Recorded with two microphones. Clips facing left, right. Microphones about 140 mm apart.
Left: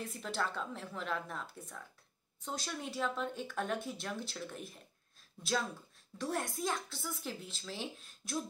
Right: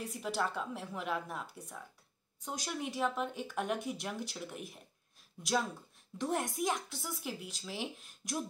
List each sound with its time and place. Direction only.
0.0 s a woman's voice: 10° right (ahead or behind)
6.1 s a woman's voice: 20° right (ahead or behind)